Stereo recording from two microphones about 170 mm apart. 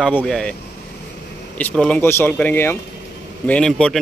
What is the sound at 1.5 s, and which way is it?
A man's voice, 10° left (ahead or behind).